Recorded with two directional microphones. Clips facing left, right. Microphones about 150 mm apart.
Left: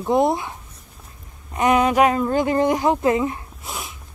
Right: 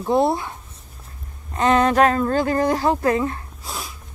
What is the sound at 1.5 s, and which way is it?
Speech, 15° left (ahead or behind).